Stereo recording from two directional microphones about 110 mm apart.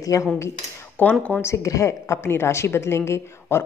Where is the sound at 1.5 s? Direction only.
30° left (ahead or behind).